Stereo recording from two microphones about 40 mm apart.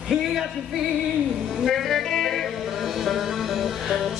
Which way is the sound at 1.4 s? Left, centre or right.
Centre.